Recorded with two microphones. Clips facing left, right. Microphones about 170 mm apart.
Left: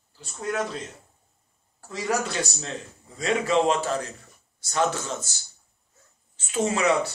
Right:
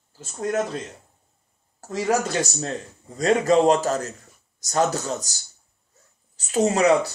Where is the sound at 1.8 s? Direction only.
40° right (ahead or behind).